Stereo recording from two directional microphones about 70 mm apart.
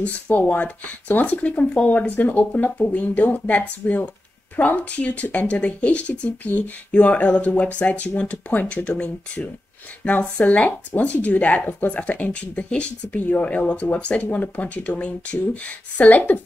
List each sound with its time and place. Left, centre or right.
0.0 s speech: centre